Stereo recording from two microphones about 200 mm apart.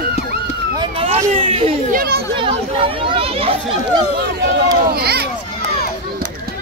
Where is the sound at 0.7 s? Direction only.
30° right (ahead or behind).